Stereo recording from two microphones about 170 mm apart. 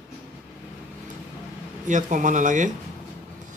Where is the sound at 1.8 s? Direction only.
45° right (ahead or behind).